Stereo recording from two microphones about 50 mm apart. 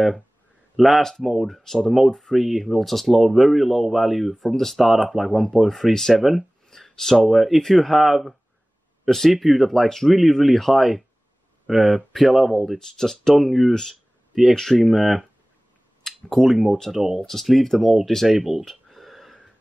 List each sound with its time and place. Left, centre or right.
0.7 s speech: centre
6.2 s a sound: centre
7.2 s speech: centre
12.7 s speech: centre
17.0 s speech: centre
17.3 s speech: centre
18.7 s a sound: centre